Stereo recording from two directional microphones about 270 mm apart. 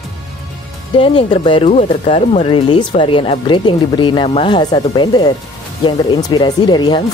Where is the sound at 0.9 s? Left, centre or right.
Centre.